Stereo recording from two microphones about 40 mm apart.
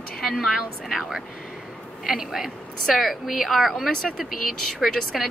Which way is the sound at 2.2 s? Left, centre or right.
Centre.